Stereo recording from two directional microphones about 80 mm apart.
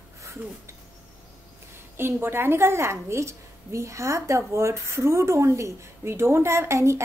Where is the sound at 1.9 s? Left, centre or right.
Right.